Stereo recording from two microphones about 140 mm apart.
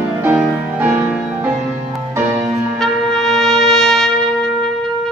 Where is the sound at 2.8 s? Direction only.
Centre (ahead or behind).